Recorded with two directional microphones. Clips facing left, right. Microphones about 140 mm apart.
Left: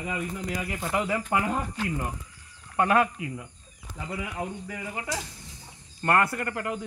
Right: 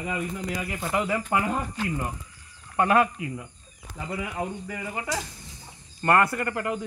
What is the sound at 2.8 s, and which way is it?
Speech, 15° right (ahead or behind).